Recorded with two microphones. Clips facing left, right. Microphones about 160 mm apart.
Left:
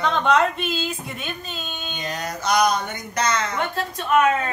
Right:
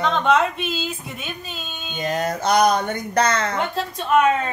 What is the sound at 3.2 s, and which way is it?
Speech, 55° right (ahead or behind).